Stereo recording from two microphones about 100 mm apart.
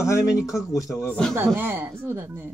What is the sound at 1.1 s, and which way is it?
Speech, 5° left (ahead or behind).